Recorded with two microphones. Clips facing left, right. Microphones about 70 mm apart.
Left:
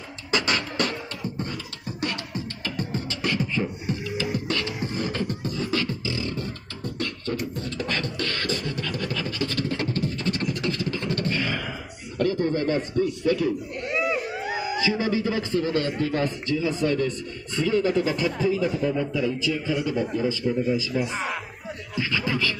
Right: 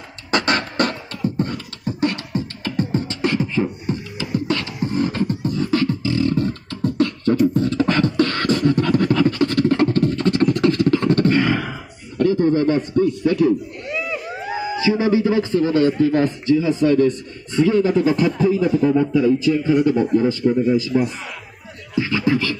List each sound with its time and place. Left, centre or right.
0.3 s beatboxing: right
7.3 s beatboxing: right
7.8 s beatboxing: right
12.2 s a man's voice: right
18.6 s a man's voice: right